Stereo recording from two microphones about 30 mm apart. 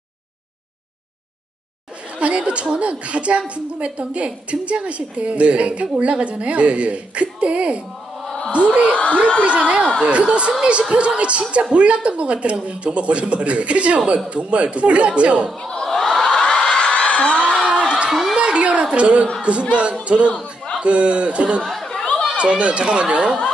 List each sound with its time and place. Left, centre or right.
2.1 s a woman's voice: right
8.9 s speech: left
9.5 s a woman's voice: right
15.9 s crowd: centre
16.4 s a sound: left
17.8 s a sound: right
19.5 s speech: right
22.0 s chatter: left
22.4 s speech: right